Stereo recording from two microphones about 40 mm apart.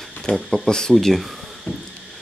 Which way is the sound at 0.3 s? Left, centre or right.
Left.